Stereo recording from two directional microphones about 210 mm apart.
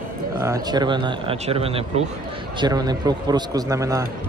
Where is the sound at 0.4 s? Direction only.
15° right (ahead or behind).